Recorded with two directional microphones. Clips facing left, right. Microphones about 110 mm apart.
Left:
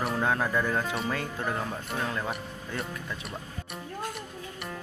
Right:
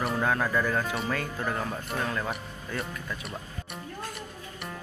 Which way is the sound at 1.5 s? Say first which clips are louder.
Right 1 dB; 5° left (ahead or behind).